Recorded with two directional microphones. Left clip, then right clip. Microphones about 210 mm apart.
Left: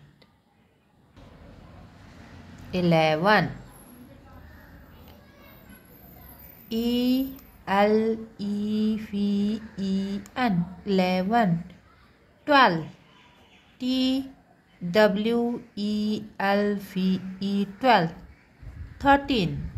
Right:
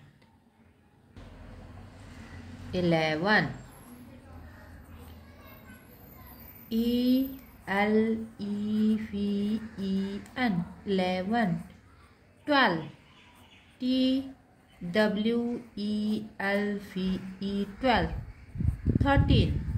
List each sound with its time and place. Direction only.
2.7 s a woman's voice: 25° left (ahead or behind)
6.7 s a woman's voice: 30° left (ahead or behind)
13.7 s speech: 30° left (ahead or behind)